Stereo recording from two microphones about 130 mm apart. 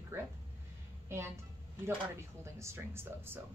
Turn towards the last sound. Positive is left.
turn(degrees=-15)  # may be behind; listen again after turning